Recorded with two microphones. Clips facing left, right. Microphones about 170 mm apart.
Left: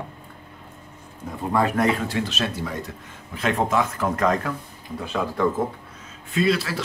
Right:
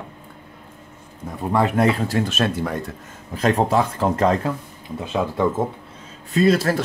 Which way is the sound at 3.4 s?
35° right (ahead or behind).